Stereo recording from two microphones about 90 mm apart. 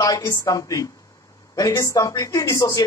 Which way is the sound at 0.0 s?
40° left (ahead or behind).